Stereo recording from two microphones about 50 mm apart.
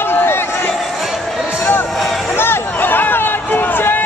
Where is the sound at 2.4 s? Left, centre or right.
Left.